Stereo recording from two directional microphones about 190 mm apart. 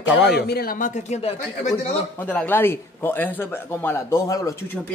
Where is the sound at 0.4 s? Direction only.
55° left (ahead or behind); by 1.9 s 35° left (ahead or behind).